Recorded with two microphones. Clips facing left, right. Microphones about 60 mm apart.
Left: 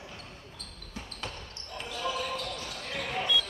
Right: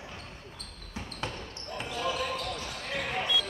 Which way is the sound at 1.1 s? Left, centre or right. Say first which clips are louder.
Right 5 dB; centre.